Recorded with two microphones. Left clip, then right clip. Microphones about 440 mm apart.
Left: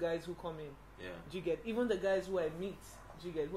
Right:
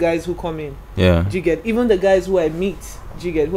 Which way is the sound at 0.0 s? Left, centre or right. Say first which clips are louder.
Right 19 dB; right.